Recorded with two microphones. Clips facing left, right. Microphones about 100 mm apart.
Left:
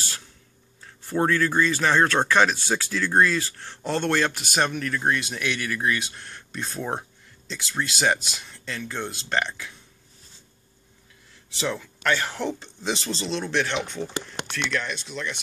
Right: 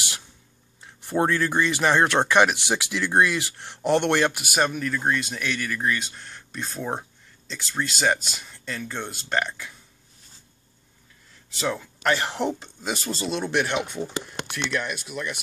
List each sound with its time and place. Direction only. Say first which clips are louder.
0.7 s speech: right 1 dB; 15° right (ahead or behind)
11.5 s speech: right 1 dB; 5° right (ahead or behind)
11.8 s speech: right 1 dB; 15° right (ahead or behind)
12.5 s speech: left 2 dB; 5° right (ahead or behind)